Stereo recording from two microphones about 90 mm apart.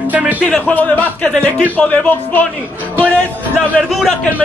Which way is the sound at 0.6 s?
15° left (ahead or behind).